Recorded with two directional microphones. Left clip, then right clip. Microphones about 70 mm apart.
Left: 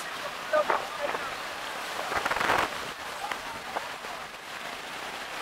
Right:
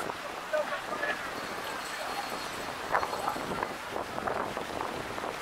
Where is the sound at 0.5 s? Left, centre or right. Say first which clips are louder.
Left 5 dB; left.